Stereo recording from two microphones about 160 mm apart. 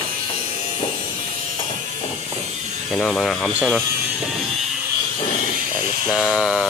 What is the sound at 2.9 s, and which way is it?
Speech, centre (ahead or behind).